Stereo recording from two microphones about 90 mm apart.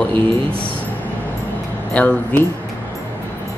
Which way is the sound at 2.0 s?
15° left (ahead or behind).